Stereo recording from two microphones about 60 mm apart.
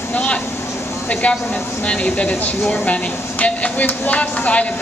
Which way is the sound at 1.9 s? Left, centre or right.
Left.